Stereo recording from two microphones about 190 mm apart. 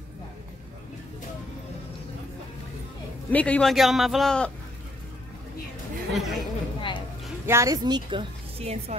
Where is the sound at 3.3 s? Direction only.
5° left (ahead or behind).